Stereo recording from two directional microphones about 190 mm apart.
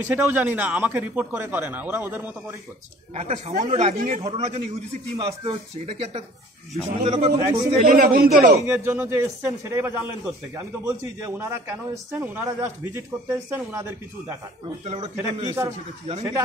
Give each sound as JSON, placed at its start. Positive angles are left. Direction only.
{"t": 0.0, "sound": "speech", "side_deg": -10}
{"t": 3.2, "sound": "speech", "side_deg": -35}
{"t": 7.8, "sound": "a man's voice", "side_deg": -50}
{"t": 8.6, "sound": "speech", "side_deg": -10}
{"t": 15.0, "sound": "speech", "side_deg": -20}